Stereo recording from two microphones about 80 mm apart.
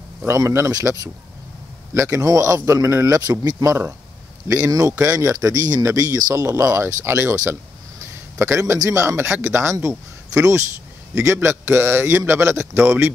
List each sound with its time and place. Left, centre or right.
0.3 s a man's voice: right
3.2 s speech: right
6.4 s a man's voice: right
8.6 s a man's voice: right